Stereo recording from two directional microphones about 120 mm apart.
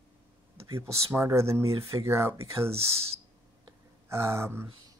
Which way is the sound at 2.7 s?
55° right (ahead or behind).